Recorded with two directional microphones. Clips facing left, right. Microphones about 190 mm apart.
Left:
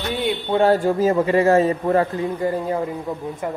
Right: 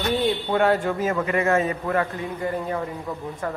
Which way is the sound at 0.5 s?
35° left (ahead or behind).